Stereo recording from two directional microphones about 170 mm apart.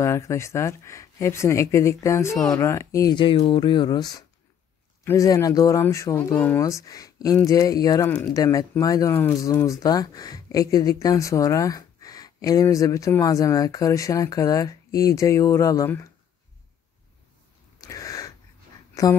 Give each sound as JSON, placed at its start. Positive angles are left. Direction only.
{"t": 0.0, "sound": "speech", "side_deg": 15}
{"t": 17.7, "sound": "a sound", "side_deg": 20}
{"t": 19.0, "sound": "a woman's voice", "side_deg": 20}